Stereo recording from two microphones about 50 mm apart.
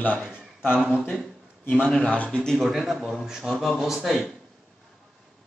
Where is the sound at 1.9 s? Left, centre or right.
Left.